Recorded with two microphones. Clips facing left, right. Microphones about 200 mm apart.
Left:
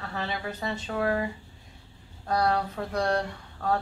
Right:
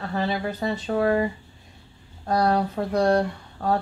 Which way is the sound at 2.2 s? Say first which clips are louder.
Right 4 dB; 35° right (ahead or behind).